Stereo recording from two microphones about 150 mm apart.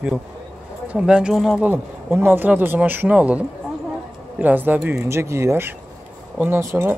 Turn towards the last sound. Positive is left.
turn(degrees=-15)  # may be behind; listen again after turning